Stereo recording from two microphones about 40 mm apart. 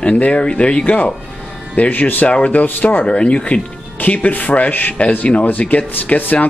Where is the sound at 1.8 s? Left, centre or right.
Left.